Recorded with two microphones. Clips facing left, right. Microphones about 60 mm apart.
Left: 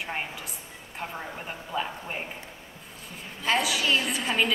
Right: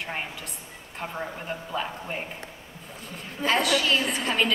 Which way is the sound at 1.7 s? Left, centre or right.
Centre.